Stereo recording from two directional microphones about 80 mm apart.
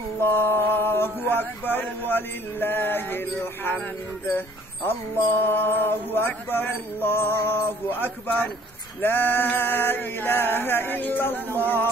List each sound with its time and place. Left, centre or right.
0.2 s male singing: left
4.3 s mantra: left